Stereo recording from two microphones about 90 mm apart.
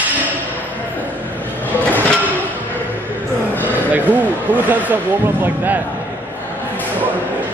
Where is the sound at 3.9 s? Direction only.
20° right (ahead or behind).